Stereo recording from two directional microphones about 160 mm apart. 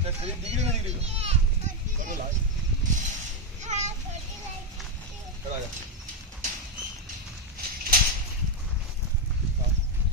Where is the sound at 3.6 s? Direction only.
45° right (ahead or behind).